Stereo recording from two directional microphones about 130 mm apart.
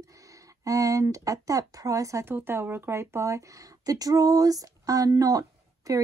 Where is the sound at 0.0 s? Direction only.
25° right (ahead or behind).